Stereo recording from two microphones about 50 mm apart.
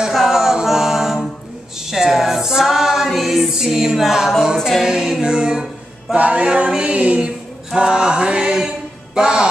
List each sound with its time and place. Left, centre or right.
0.1 s a sound: centre
1.9 s music: centre
4.6 s a capella: centre
6.1 s a capella: right